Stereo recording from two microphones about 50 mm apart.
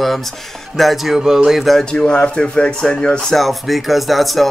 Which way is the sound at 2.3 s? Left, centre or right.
Left.